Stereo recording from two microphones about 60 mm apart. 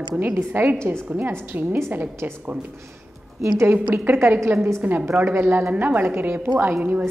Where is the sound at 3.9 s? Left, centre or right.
Right.